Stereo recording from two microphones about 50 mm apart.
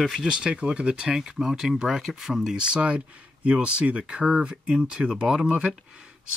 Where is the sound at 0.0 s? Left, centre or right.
Centre.